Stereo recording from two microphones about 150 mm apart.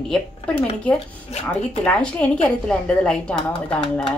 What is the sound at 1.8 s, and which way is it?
A woman's voice, 5° left (ahead or behind).